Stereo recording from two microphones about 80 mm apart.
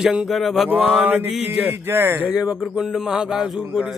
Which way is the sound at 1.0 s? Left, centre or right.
Right.